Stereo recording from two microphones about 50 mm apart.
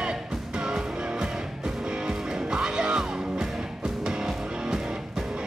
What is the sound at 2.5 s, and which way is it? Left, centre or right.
Music, centre.